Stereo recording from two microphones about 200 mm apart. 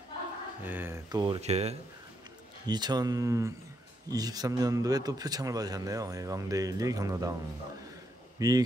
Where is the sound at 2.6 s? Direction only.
20° right (ahead or behind).